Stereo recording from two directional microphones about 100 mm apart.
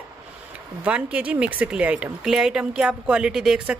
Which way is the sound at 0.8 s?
10° right (ahead or behind).